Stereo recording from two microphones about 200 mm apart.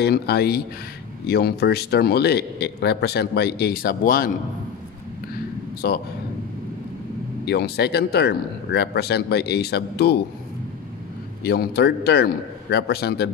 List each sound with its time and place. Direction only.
0.0 s speech: 55° left (ahead or behind)
5.8 s speech: 55° left (ahead or behind)
7.4 s speech: 55° left (ahead or behind)
11.4 s speech: 50° left (ahead or behind)